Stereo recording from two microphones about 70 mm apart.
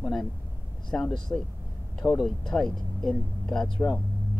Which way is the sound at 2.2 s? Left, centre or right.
Centre.